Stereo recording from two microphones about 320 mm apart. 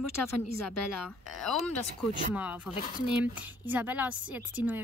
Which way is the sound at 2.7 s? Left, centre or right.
Left.